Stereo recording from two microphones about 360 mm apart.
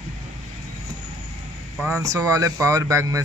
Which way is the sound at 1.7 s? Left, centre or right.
Centre.